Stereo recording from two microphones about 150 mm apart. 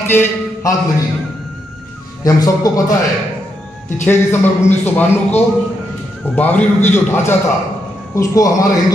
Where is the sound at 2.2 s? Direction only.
25° left (ahead or behind).